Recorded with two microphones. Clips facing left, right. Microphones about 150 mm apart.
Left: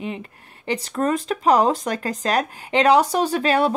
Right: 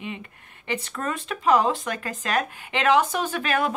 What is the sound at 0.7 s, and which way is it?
Speech, 35° left (ahead or behind).